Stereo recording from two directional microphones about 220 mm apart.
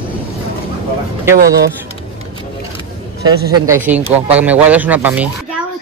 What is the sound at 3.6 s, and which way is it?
Speech, 10° right (ahead or behind).